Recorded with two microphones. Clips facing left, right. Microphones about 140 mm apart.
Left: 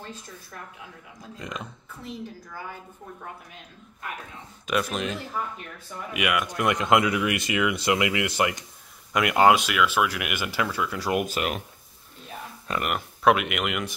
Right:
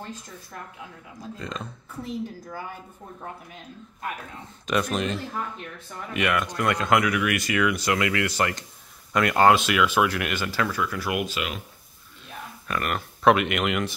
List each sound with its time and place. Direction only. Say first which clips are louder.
1.4 s speech: even; 15° left (ahead or behind)
4.6 s speech: right 2 dB; 5° left (ahead or behind); by 11.2 s 30° left (ahead or behind)
11.3 s speech: left 3 dB; 50° left (ahead or behind)
12.6 s speech: even; 15° left (ahead or behind)
13.2 s speech: right 2 dB; 5° left (ahead or behind)